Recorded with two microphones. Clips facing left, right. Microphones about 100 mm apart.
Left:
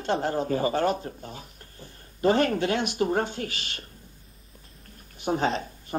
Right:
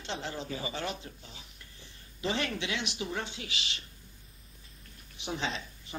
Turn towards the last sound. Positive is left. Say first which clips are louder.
# left 9 dB
turn(degrees=45)  # may be behind; listen again after turning